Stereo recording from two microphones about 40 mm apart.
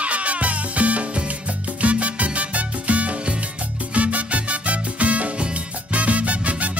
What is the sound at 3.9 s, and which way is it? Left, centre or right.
Music, right.